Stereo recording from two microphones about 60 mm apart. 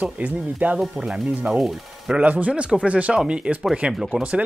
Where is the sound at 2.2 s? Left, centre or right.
Right.